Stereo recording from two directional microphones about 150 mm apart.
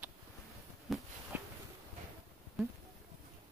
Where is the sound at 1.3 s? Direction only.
10° right (ahead or behind).